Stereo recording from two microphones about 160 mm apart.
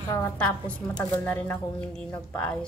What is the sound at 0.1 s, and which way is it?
A woman's voice, 10° left (ahead or behind).